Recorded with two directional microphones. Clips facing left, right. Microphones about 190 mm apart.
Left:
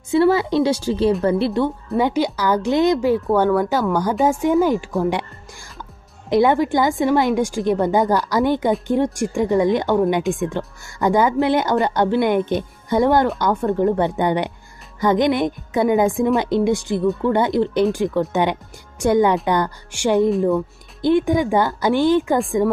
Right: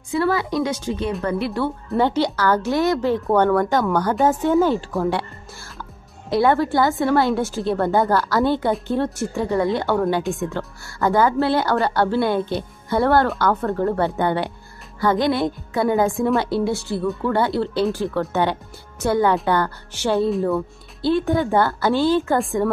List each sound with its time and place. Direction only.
0.1 s a woman's voice: 25° left (ahead or behind)
2.0 s a woman's voice: 10° left (ahead or behind)
3.3 s a woman's voice: 5° left (ahead or behind)
6.3 s a woman's voice: 15° left (ahead or behind)